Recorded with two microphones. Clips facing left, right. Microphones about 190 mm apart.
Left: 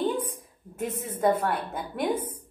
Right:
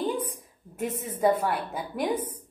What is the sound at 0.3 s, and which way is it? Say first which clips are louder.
A woman's voice: left 1 dB; centre (ahead or behind).